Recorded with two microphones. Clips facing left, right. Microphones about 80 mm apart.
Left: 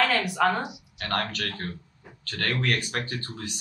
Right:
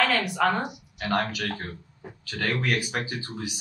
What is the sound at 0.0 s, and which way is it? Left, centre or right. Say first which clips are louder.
Speech: even; centre.